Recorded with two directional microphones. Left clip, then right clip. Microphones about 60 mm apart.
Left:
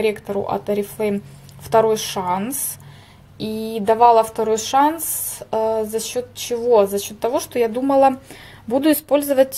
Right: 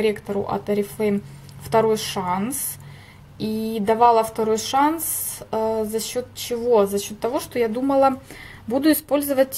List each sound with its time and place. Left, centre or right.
0.0 s a woman's voice: left